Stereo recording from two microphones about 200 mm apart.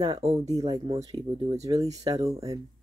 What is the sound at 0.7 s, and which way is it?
Speech, 20° right (ahead or behind).